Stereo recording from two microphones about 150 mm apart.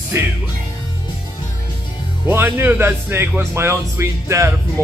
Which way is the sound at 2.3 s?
15° right (ahead or behind).